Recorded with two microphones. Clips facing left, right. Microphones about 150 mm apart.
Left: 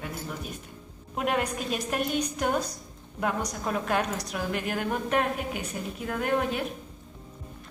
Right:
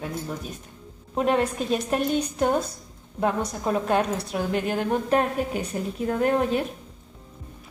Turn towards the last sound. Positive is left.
turn(degrees=-35)  # may be behind; listen again after turning